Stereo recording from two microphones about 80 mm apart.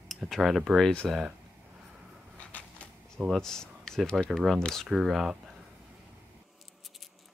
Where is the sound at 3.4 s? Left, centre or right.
Centre.